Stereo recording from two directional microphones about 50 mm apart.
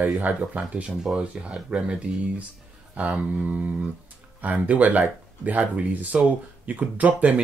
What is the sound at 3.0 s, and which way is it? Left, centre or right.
Speech, right.